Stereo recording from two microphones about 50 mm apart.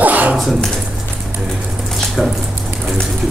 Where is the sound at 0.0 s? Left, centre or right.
Right.